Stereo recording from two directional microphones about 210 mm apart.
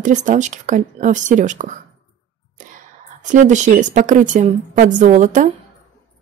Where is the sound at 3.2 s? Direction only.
35° right (ahead or behind).